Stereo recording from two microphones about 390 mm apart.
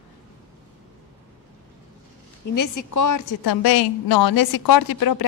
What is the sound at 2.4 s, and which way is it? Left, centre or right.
A woman's voice, left.